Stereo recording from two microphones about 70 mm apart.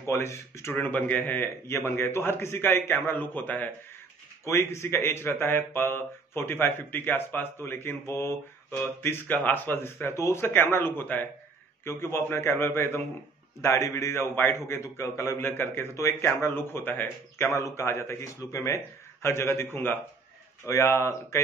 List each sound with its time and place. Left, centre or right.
0.0 s speech: left
0.7 s a man's voice: left
1.8 s speech: left
4.5 s speech: left
13.6 s speech: left
14.3 s a man's voice: left
14.6 s speech: left
16.6 s speech: left
17.5 s speech: left
17.8 s speech: left
20.6 s speech: left